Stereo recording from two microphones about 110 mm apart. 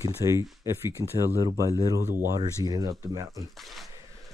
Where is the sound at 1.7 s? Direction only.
35° right (ahead or behind).